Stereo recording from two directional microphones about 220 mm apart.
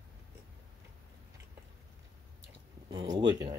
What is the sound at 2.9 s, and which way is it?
Speech, 20° right (ahead or behind).